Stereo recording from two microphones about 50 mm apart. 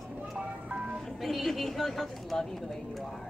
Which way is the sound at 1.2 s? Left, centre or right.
Centre.